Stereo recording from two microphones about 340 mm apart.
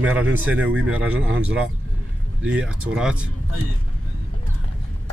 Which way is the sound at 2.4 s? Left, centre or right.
Centre.